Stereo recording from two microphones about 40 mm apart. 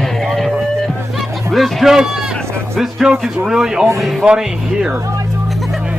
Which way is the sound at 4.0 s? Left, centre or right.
Centre.